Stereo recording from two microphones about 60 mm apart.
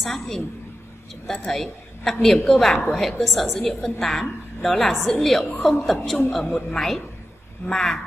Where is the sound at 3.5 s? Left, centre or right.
Centre.